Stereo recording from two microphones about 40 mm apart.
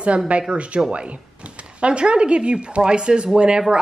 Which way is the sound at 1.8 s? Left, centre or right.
Right.